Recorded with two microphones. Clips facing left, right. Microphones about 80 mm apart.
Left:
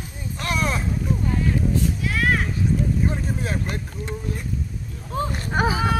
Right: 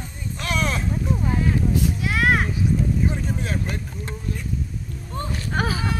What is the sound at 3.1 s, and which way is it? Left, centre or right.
Vehicle, centre.